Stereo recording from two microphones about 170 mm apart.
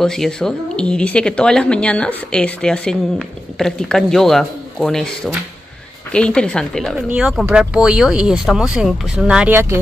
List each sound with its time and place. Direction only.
0.0 s speech: 5° left (ahead or behind); by 9.8 s 15° right (ahead or behind)